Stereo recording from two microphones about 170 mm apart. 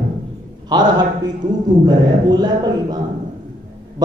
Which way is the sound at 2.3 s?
25° right (ahead or behind).